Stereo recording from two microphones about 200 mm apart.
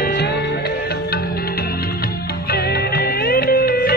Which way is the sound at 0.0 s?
50° left (ahead or behind).